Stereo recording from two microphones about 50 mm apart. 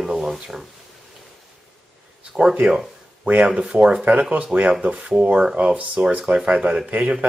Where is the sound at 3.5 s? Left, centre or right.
Centre.